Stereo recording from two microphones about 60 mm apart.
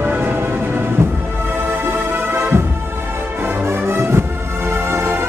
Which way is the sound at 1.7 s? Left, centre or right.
Right.